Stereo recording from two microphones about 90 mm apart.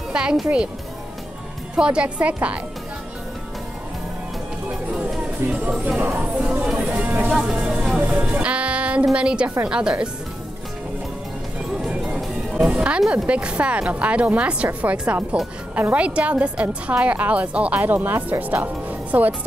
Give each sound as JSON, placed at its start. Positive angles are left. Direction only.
{"t": 0.1, "sound": "speech", "side_deg": -10}
{"t": 1.8, "sound": "a woman's voice", "side_deg": -10}
{"t": 4.9, "sound": "music", "side_deg": -5}
{"t": 5.9, "sound": "a woman's voice", "side_deg": -20}
{"t": 11.9, "sound": "music", "side_deg": -15}
{"t": 13.1, "sound": "a woman's voice", "side_deg": -15}